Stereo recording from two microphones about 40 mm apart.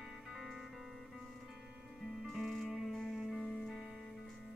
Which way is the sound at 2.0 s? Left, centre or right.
Centre.